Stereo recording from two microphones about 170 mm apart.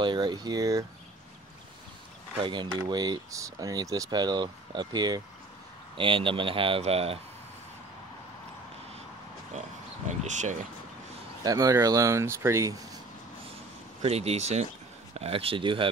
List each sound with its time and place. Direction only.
0.0 s speech: 25° right (ahead or behind)
2.4 s speech: 25° right (ahead or behind)
10.0 s speech: 45° right (ahead or behind)
11.4 s speech: 20° right (ahead or behind)
14.0 s speech: 35° right (ahead or behind)